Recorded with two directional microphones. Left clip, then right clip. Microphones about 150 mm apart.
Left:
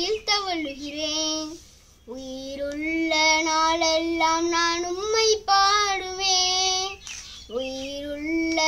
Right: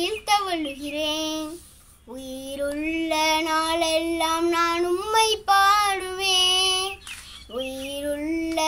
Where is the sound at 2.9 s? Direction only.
15° left (ahead or behind).